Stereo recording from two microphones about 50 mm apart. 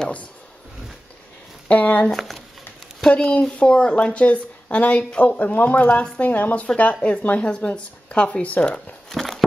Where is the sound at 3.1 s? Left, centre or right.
Left.